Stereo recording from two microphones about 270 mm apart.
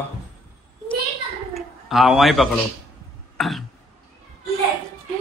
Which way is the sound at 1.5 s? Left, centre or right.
Centre.